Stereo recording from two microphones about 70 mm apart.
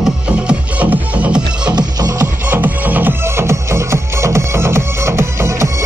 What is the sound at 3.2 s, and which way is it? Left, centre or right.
Music, right.